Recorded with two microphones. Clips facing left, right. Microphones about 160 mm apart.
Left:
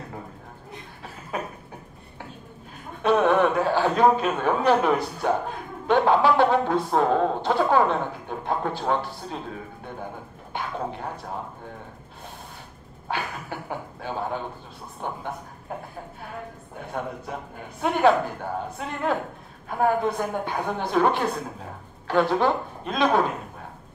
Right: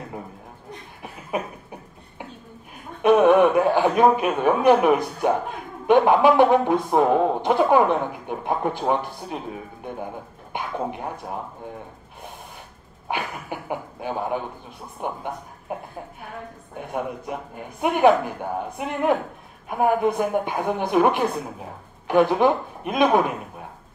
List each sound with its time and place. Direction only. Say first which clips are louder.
3.0 s speech: right 5 dB; 15° right (ahead or behind)
13.1 s speech: right 2 dB; 15° right (ahead or behind)
16.9 s speech: right 3 dB; 15° right (ahead or behind)